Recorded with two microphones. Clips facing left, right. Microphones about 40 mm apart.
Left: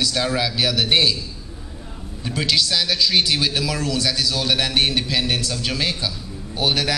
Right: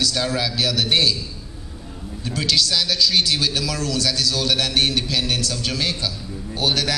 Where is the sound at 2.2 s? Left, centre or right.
Centre.